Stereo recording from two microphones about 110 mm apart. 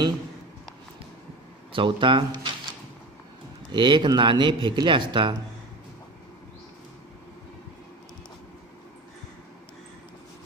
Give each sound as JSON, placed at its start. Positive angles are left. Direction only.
{"t": 1.7, "sound": "speech", "side_deg": -50}
{"t": 3.7, "sound": "speech", "side_deg": -45}